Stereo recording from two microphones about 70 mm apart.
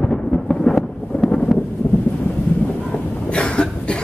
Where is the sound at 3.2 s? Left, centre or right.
Centre.